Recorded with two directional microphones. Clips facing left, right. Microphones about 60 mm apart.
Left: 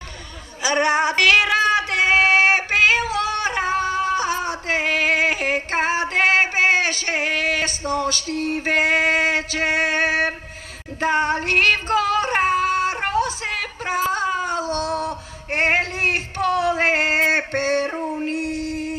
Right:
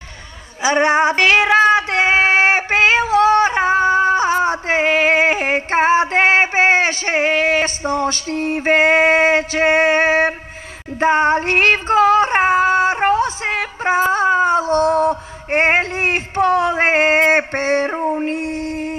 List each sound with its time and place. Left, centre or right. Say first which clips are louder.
0.6 s female singing: right 4 dB; right